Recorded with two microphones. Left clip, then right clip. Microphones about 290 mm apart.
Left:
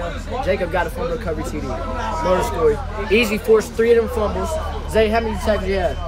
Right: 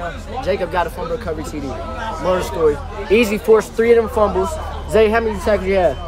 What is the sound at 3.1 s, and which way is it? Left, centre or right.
Speech, right.